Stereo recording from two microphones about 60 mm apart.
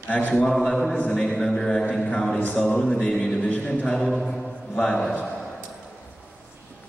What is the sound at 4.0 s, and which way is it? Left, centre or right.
Speech, centre.